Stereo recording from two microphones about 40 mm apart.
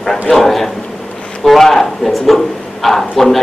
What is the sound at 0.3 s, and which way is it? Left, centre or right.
Speech, centre.